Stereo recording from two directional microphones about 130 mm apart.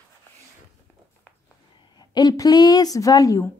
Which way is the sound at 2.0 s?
30° left (ahead or behind).